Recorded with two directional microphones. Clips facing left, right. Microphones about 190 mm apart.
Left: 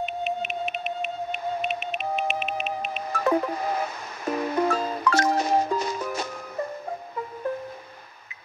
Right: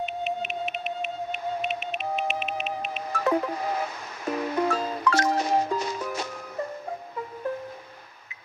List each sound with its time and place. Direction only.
0.0 s music: 50° left (ahead or behind)